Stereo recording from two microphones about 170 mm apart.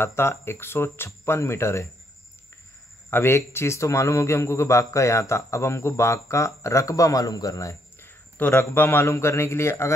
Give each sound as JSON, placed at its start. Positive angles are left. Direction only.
{"t": 0.0, "sound": "a man's voice", "side_deg": 15}
{"t": 3.1, "sound": "a man's voice", "side_deg": 15}